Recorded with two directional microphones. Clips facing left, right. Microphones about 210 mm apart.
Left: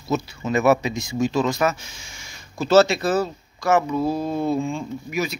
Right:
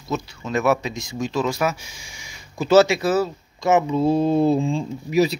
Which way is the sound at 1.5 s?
10° right (ahead or behind).